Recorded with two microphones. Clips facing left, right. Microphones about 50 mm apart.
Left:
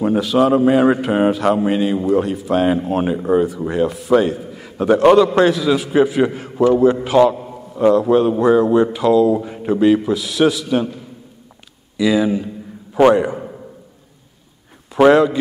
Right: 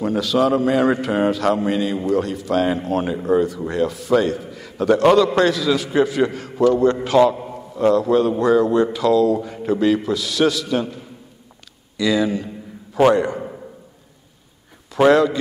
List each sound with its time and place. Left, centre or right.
0.0 s a man's voice: centre
12.0 s a man's voice: centre
15.0 s a man's voice: centre